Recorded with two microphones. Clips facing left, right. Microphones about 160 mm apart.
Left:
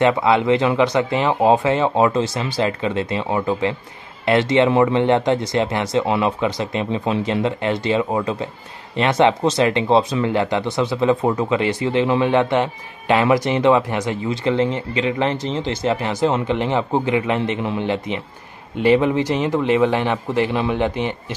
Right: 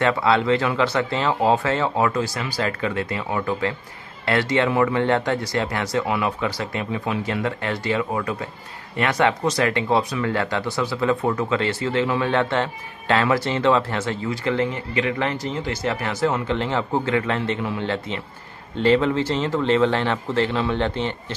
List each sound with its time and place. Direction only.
0.0 s speech: 20° left (ahead or behind)